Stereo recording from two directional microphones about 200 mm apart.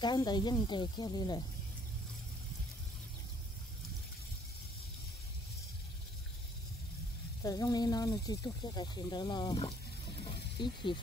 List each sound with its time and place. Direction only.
0.0 s speech: 20° left (ahead or behind)
7.4 s speech: 20° left (ahead or behind)
10.2 s mechanisms: 25° left (ahead or behind)